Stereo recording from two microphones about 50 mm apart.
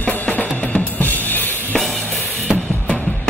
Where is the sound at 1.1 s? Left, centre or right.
Left.